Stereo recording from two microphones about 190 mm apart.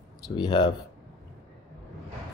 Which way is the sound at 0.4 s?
25° left (ahead or behind).